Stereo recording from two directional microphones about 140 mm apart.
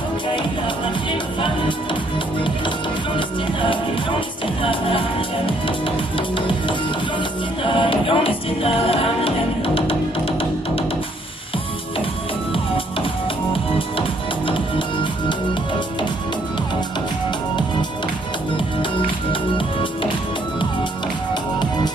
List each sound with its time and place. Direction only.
4.6 s music: 40° left (ahead or behind)
6.1 s music: 35° left (ahead or behind)
7.6 s music: 40° left (ahead or behind)
13.7 s music: 40° left (ahead or behind)
19.5 s music: 40° left (ahead or behind)